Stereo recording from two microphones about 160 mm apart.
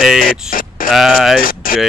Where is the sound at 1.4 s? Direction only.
65° left (ahead or behind).